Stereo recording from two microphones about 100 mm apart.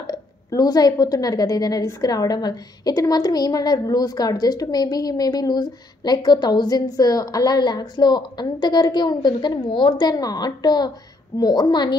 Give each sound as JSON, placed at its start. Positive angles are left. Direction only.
{"t": 0.0, "sound": "a woman's voice", "side_deg": 40}